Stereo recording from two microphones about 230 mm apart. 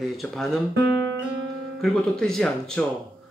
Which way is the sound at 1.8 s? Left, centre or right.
Centre.